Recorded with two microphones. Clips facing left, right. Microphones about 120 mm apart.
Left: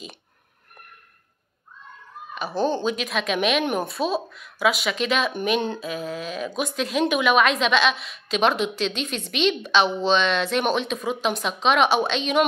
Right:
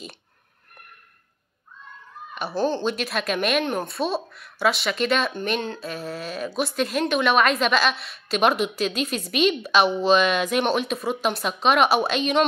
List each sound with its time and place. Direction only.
2.8 s a woman's voice: centre (ahead or behind)
5.3 s speech: 10° left (ahead or behind)
5.8 s a woman's voice: centre (ahead or behind)